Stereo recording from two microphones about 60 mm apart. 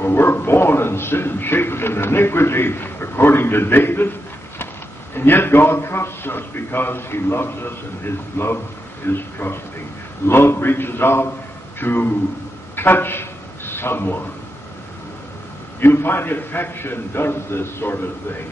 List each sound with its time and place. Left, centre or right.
0.0 s a man's voice: left
5.1 s speech: left
12.7 s a sound: left
15.8 s speech: left